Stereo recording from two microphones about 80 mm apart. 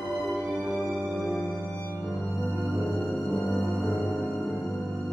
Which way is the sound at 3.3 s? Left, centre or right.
Centre.